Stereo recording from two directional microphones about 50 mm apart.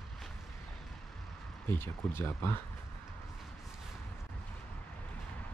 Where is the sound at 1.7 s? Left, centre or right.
Left.